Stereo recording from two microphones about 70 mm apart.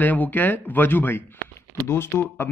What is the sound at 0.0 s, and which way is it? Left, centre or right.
Speech, left.